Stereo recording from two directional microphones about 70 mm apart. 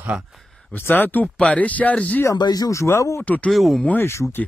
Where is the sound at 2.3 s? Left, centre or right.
Left.